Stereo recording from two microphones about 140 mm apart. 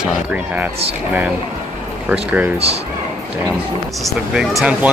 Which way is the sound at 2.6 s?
45° right (ahead or behind).